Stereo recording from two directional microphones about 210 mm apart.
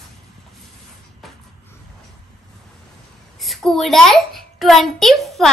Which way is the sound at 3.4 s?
Centre (ahead or behind).